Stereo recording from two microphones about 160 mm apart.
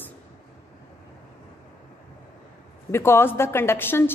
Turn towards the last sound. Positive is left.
turn(degrees=15)  # may be behind; listen again after turning